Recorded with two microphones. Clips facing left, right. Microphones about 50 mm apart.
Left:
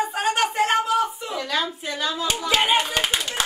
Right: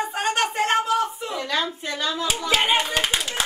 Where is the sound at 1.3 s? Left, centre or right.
Centre.